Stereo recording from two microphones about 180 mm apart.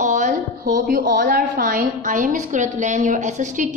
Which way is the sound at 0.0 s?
45° right (ahead or behind).